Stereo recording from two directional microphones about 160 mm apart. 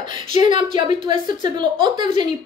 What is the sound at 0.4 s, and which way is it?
A woman's voice, 30° right (ahead or behind).